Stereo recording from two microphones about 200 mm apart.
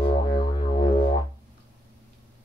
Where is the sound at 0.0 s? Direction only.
25° left (ahead or behind).